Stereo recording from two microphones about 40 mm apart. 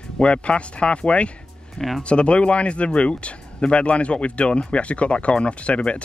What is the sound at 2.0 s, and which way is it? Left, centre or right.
Speech, left.